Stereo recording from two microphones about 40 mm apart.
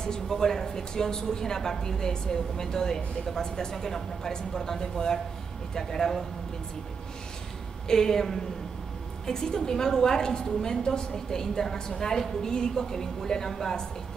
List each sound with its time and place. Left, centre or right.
0.0 s speech: centre
7.9 s speech: centre